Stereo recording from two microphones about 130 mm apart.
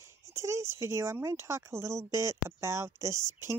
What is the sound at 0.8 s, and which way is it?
Speech, 20° right (ahead or behind).